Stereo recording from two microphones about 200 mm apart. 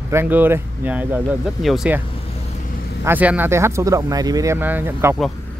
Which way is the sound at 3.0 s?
10° right (ahead or behind).